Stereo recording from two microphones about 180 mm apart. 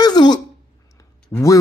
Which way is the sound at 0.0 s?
25° left (ahead or behind).